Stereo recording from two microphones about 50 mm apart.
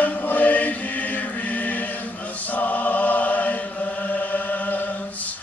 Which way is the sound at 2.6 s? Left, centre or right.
Left.